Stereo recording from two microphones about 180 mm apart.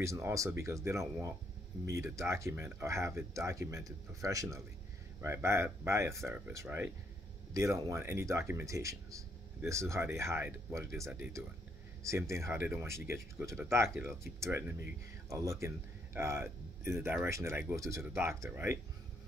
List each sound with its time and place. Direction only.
0.0 s speech: 15° right (ahead or behind)